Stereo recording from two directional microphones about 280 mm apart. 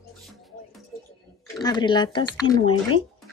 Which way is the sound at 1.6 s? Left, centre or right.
Centre.